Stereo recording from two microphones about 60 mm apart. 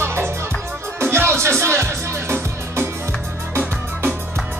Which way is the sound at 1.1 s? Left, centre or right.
Right.